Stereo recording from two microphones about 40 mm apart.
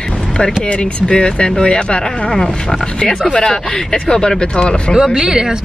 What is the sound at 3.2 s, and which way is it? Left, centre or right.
Speech, centre.